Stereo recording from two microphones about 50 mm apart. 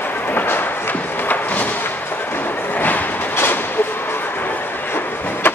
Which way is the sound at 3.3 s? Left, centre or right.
Left.